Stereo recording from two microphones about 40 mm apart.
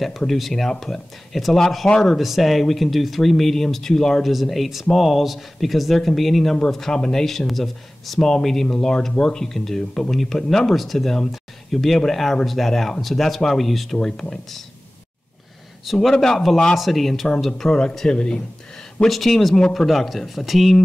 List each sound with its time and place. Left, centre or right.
0.3 s speech: centre
4.2 s speech: centre
14.0 s speech: centre
15.8 s a man's voice: centre; by 18.4 s left
19.0 s speech: centre